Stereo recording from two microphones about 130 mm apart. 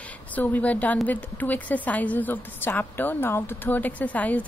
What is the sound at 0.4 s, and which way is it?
A woman's voice, 10° left (ahead or behind).